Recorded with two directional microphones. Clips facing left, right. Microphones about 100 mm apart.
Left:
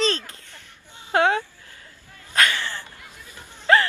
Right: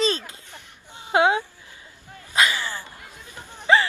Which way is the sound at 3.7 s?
5° right (ahead or behind).